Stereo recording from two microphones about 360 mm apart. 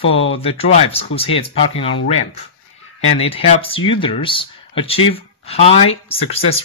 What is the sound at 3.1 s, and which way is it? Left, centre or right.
Speech, centre.